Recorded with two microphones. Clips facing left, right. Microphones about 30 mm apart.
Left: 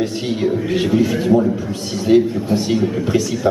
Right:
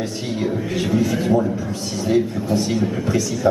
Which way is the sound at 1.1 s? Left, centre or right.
Centre.